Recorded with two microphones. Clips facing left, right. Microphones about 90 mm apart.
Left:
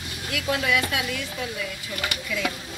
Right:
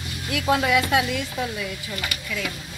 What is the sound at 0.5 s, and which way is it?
Speech, 30° right (ahead or behind).